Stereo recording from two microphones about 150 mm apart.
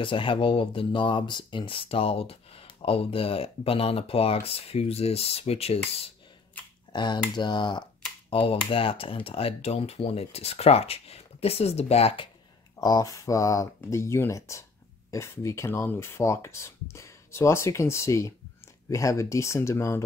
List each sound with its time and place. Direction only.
0.0 s speech: 35° left (ahead or behind)
6.9 s speech: 30° left (ahead or behind)
12.8 s speech: 25° left (ahead or behind)